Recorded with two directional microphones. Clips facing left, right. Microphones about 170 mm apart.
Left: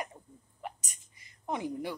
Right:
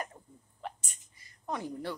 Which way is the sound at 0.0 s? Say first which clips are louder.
Even; 15° left (ahead or behind).